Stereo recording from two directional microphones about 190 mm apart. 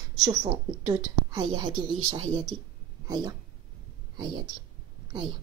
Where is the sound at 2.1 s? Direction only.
30° right (ahead or behind).